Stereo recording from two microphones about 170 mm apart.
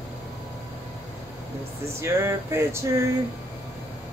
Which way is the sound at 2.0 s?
15° right (ahead or behind).